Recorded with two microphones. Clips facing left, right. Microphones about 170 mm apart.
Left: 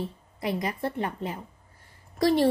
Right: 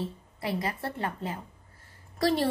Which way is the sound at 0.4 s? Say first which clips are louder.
Left 3 dB; 15° left (ahead or behind).